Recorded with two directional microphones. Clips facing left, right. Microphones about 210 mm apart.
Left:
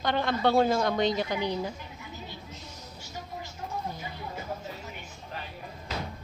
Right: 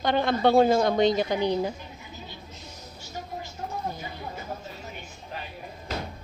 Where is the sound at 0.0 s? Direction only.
20° right (ahead or behind).